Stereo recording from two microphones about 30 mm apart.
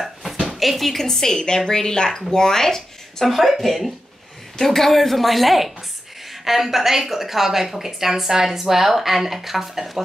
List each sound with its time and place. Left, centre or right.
0.0 s a sound: centre
0.6 s a woman's voice: centre
1.0 s a woman's voice: centre
4.6 s a woman's voice: centre